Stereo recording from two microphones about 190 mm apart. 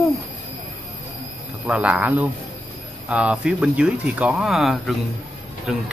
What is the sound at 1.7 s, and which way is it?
Speech, 5° right (ahead or behind).